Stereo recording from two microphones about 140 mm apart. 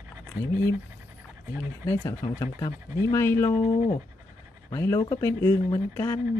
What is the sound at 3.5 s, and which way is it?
Speech, 60° left (ahead or behind).